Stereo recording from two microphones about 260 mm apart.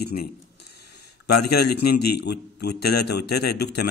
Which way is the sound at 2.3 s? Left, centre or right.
Left.